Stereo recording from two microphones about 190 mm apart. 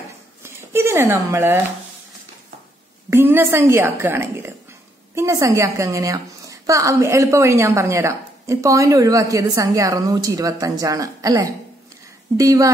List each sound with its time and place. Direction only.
0.4 s speech: 15° right (ahead or behind)
3.1 s a woman's voice: 10° right (ahead or behind)